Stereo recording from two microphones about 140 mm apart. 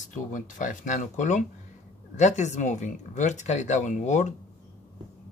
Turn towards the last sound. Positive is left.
turn(degrees=60)  # may be behind; listen again after turning